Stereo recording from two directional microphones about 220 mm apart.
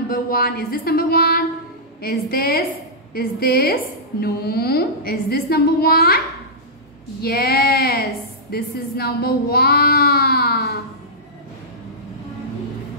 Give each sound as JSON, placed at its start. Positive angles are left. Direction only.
{"t": 0.1, "sound": "a woman's voice", "side_deg": 40}